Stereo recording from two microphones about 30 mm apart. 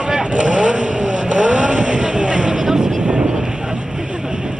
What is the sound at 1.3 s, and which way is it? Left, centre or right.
Vehicle, right.